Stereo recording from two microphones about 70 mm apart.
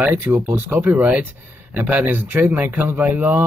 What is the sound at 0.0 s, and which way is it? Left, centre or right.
Speech, right.